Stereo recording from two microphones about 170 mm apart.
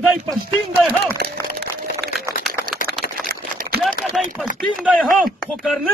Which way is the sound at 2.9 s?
65° right (ahead or behind).